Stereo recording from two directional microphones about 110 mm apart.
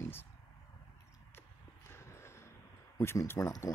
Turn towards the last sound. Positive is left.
turn(degrees=35)  # may be behind; listen again after turning